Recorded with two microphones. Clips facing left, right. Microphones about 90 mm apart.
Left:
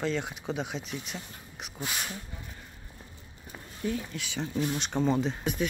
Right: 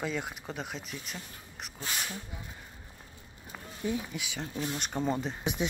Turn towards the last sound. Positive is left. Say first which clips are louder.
# left 2 dB
turn(degrees=-15)  # may be behind; listen again after turning